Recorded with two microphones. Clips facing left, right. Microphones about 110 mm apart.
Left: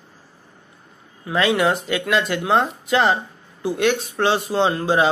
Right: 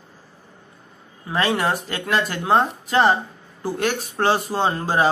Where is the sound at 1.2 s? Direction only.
35° right (ahead or behind).